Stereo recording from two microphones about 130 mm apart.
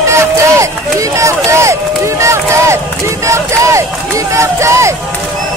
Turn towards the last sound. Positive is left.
turn(degrees=-20)  # may be behind; listen again after turning